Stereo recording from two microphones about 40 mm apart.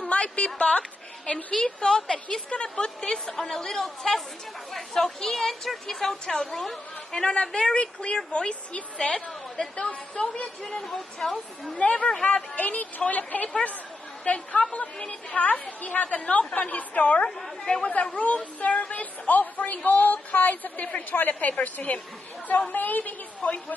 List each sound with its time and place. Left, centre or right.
0.1 s a sound: left
1.6 s a woman's voice: left
7.1 s a woman's voice: left
10.8 s a woman's voice: centre
11.2 s a woman's voice: centre
11.7 s a woman's voice: left
17.7 s a woman's voice: left
18.1 s a woman's voice: left